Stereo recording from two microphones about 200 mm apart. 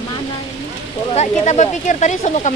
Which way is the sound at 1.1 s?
35° left (ahead or behind).